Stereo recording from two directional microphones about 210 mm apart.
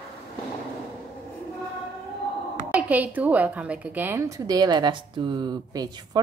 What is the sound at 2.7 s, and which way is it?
A woman's voice, 5° right (ahead or behind).